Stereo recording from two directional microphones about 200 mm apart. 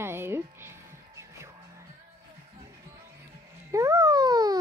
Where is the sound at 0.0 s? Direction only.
10° right (ahead or behind).